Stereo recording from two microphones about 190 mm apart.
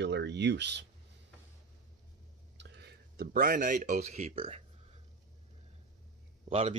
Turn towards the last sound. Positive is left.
turn(degrees=-30)  # may be behind; listen again after turning